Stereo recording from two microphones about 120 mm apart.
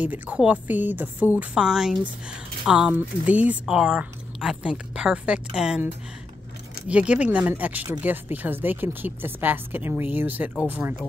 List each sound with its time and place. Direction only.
0.0 s speech: 10° right (ahead or behind)
6.9 s speech: 10° right (ahead or behind)